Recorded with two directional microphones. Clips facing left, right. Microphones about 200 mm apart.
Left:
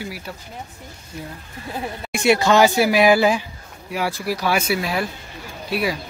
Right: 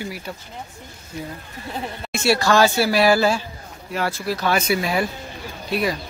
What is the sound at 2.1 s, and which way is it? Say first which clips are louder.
Speech: left 2 dB; 15° left (ahead or behind).